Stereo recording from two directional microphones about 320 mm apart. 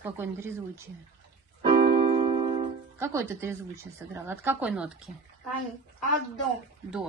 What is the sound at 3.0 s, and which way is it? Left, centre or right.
A woman's voice, centre.